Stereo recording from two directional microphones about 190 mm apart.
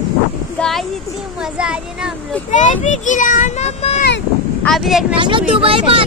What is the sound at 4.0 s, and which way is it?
Vehicle, 65° left (ahead or behind).